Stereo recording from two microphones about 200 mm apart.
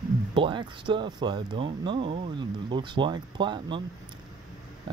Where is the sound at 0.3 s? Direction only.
25° right (ahead or behind).